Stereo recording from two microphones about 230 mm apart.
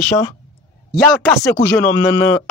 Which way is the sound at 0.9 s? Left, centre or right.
Centre.